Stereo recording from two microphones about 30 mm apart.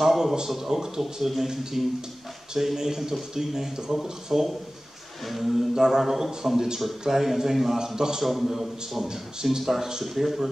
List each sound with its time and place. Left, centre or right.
0.2 s speech: centre
5.8 s speech: centre
8.2 s speech: centre
9.0 s speech: centre